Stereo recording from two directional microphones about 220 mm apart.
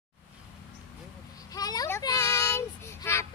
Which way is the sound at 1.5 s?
15° left (ahead or behind).